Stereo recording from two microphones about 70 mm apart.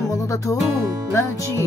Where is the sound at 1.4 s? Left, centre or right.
Right.